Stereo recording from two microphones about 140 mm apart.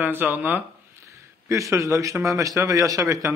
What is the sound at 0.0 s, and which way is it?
A man's voice, 15° right (ahead or behind).